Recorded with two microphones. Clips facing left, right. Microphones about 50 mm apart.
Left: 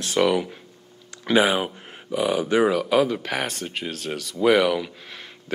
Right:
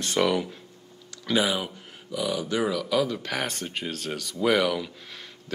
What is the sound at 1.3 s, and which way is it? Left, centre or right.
Speech, left.